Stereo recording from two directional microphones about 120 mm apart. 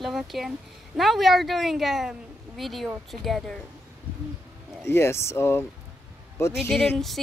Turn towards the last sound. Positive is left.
turn(degrees=0)  # may be behind; listen again after turning